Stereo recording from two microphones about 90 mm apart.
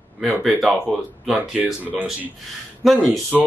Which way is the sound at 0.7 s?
15° right (ahead or behind).